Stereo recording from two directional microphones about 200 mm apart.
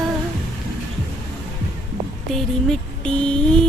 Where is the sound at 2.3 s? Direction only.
5° left (ahead or behind).